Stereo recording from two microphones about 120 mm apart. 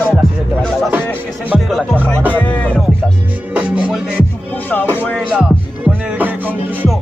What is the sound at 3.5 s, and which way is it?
Music, 10° right (ahead or behind).